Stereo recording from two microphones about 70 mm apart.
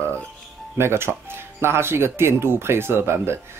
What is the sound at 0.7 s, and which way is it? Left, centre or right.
Speech, right.